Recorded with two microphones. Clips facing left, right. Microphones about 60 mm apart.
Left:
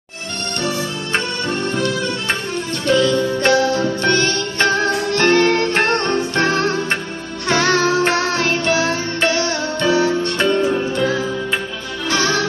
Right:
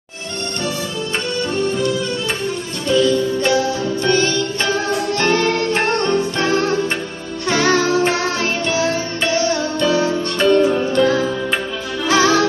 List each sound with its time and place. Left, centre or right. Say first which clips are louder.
2.9 s music: even; left
10.5 s music: right 3 dB; centre
12.1 s music: right 4 dB; centre